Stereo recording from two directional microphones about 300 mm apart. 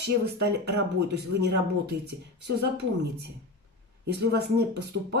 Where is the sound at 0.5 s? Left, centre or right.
Right.